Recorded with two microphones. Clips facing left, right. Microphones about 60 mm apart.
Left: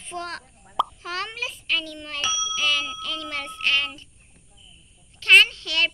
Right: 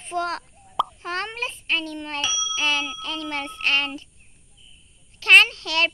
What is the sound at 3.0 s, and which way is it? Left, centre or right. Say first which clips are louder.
A child's voice: right 2 dB; right.